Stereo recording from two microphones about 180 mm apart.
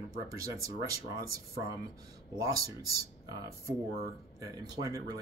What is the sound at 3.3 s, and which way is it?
Speech, 20° right (ahead or behind).